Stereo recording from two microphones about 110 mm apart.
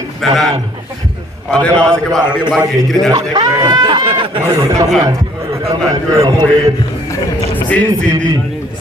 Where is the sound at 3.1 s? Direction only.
35° right (ahead or behind).